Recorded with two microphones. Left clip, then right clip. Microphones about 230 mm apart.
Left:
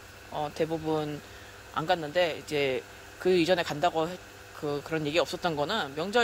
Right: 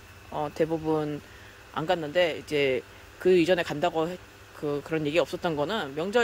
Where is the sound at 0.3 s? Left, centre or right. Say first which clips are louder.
Right 3 dB; centre.